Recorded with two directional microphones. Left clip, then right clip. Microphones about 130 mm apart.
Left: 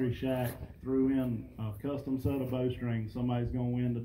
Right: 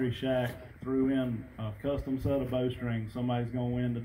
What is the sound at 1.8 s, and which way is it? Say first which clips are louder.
Speech: right 3 dB; 20° right (ahead or behind).